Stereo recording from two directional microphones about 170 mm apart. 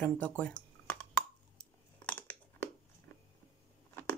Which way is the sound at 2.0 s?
10° left (ahead or behind).